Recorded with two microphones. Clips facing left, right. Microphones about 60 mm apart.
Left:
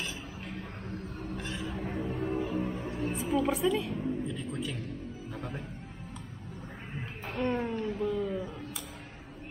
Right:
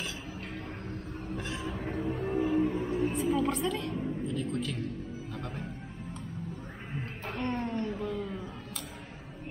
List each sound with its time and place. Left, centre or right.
1.3 s music: centre
2.2 s music: right
2.7 s music: centre
4.4 s music: centre
7.2 s a sound: centre